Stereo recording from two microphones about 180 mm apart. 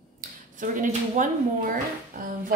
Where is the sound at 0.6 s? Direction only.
45° right (ahead or behind).